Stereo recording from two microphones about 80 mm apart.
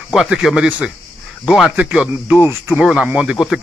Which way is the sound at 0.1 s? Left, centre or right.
Centre.